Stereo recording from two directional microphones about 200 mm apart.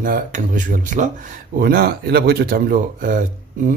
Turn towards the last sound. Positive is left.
turn(degrees=-40)  # may be behind; listen again after turning